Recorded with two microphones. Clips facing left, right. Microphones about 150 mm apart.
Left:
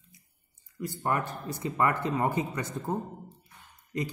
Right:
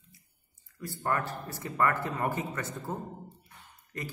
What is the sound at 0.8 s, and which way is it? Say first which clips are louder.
A man's voice: left 2 dB; 20° left (ahead or behind).